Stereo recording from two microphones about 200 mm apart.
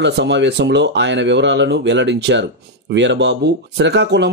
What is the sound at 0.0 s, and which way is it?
Speech, 60° right (ahead or behind).